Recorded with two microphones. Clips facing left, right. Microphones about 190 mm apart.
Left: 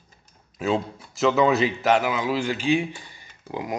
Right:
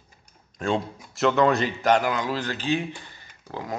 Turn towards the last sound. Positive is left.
turn(degrees=15)  # may be behind; listen again after turning